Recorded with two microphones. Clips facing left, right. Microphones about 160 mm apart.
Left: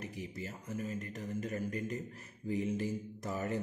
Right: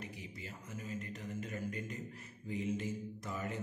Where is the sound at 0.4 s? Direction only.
45° left (ahead or behind).